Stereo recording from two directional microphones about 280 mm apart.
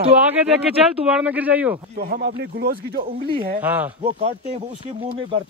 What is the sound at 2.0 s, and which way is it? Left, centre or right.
Speech, right.